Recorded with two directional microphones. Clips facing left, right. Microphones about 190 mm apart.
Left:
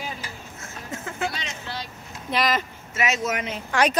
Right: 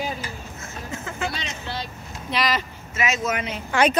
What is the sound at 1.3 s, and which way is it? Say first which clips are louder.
Vehicle: right 2 dB; 25° right (ahead or behind).